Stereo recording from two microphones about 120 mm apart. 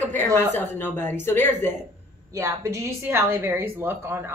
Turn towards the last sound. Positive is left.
turn(degrees=-20)  # may be behind; listen again after turning